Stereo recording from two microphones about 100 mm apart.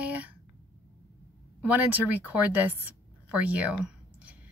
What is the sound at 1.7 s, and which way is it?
A woman's voice, 15° right (ahead or behind).